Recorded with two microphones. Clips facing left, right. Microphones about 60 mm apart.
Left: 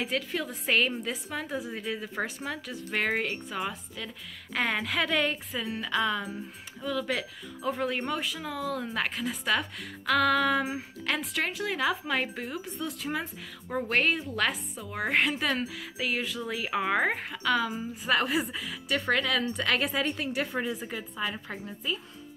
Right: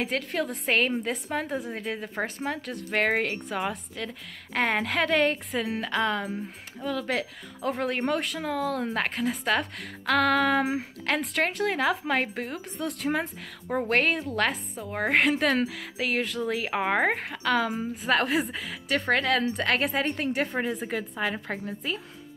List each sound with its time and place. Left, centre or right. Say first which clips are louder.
0.0 s a woman's voice: right 3 dB; right
4.6 s a woman's voice: right 3 dB; right
5.8 s a woman's voice: even; right
14.9 s a woman's voice: right 3 dB; right
15.1 s a woman's voice: right 5 dB; right
17.2 s a woman's voice: right 2 dB; right
18.5 s a woman's voice: right 2 dB; right
20.9 s a woman's voice: right 4 dB; right